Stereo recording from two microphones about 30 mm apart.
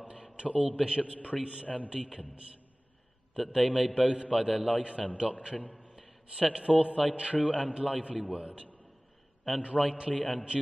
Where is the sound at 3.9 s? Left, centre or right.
Right.